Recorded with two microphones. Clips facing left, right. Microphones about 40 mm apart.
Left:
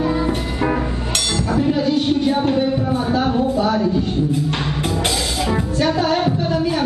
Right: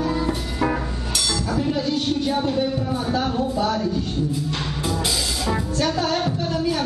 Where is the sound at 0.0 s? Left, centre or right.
Centre.